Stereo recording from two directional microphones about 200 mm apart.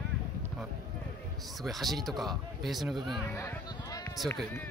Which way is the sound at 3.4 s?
15° left (ahead or behind).